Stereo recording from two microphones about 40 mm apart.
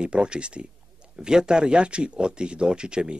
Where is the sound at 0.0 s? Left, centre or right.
Right.